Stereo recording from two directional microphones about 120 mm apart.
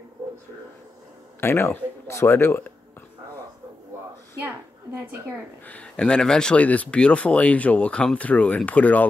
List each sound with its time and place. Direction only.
1.4 s speech: 20° left (ahead or behind)
5.7 s speech: 10° left (ahead or behind)